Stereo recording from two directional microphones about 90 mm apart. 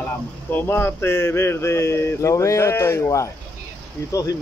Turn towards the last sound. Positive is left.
turn(degrees=40)  # may be behind; listen again after turning